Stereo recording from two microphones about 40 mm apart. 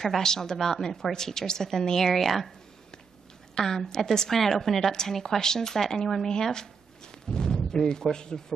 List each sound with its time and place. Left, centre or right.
0.0 s a woman's voice: centre
3.5 s a woman's voice: centre